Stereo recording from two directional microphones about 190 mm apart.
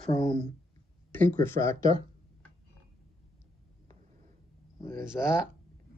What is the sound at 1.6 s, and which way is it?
Speech, 15° left (ahead or behind).